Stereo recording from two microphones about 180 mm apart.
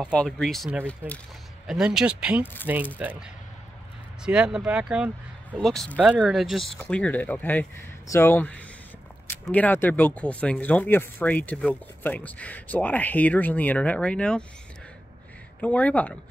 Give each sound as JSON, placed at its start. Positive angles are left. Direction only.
{"t": 0.1, "sound": "speech", "side_deg": 5}
{"t": 1.7, "sound": "speech", "side_deg": -5}
{"t": 15.6, "sound": "speech", "side_deg": 10}